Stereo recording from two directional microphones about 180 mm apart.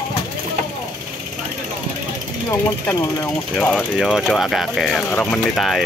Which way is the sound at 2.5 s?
15° left (ahead or behind).